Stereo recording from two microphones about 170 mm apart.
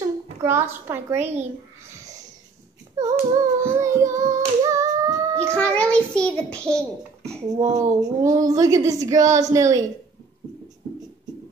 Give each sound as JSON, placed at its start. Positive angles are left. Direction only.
{"t": 0.4, "sound": "child singing", "side_deg": -15}
{"t": 1.2, "sound": "a child's voice", "side_deg": -40}
{"t": 3.0, "sound": "child singing", "side_deg": -15}
{"t": 4.2, "sound": "singing", "side_deg": -20}
{"t": 5.6, "sound": "a child's voice", "side_deg": 5}
{"t": 7.5, "sound": "speech", "side_deg": -20}